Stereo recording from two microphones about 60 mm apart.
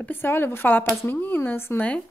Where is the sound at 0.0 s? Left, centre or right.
Left.